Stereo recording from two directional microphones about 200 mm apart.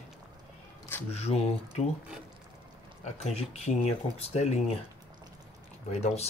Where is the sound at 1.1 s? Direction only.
30° left (ahead or behind).